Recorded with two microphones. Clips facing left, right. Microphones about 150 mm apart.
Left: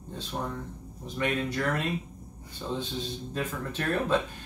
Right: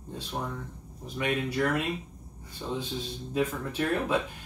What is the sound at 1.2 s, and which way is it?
Speech, 10° right (ahead or behind).